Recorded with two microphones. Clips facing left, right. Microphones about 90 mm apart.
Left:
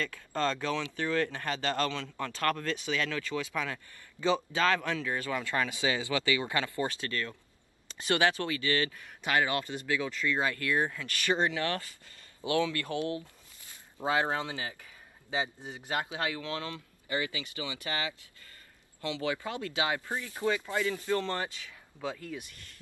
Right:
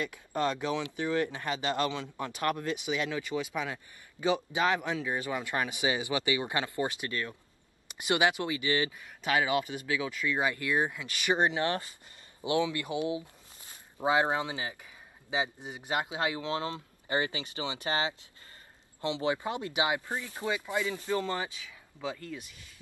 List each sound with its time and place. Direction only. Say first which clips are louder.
0.0 s speech: right 1 dB; 15° right (ahead or behind)
9.2 s speech: right 1 dB; 5° right (ahead or behind)
22.0 s speech: even; centre (ahead or behind)